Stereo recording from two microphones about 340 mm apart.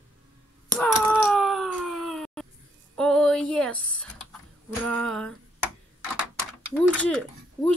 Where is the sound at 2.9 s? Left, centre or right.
Centre.